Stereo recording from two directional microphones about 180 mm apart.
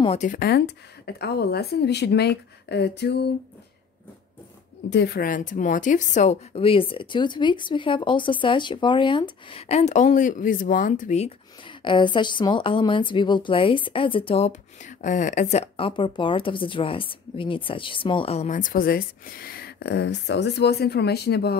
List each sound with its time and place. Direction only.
0.0 s speech: 35° left (ahead or behind)
0.3 s speech: 60° left (ahead or behind)
4.8 s a woman's voice: 70° left (ahead or behind); by 11.3 s 40° left (ahead or behind)
11.8 s a woman's voice: 25° left (ahead or behind)
15.0 s speech: 45° left (ahead or behind); by 21.5 s 65° left (ahead or behind)